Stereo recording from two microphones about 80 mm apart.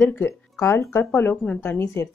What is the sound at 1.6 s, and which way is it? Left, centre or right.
Speech, left.